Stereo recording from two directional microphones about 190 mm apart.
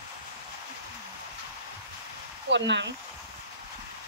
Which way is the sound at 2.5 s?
70° right (ahead or behind).